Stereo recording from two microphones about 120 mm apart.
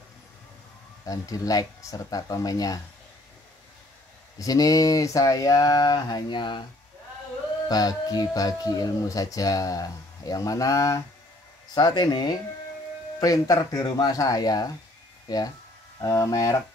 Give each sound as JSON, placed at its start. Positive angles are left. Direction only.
{"t": 1.0, "sound": "speech", "side_deg": 30}
{"t": 4.4, "sound": "speech", "side_deg": 30}
{"t": 7.6, "sound": "speech", "side_deg": 35}